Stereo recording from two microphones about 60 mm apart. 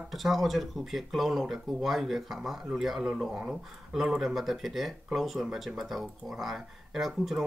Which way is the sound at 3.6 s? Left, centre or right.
Centre.